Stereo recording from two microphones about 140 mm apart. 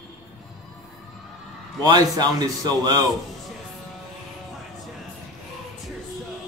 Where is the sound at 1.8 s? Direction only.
30° right (ahead or behind).